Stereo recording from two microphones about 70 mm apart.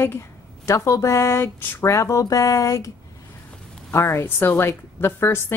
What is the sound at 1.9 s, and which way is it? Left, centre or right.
Speech, left.